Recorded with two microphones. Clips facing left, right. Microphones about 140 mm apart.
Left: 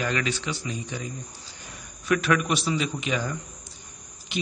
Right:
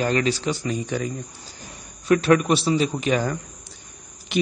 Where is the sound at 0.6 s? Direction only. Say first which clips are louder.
Right 8 dB; 60° right (ahead or behind).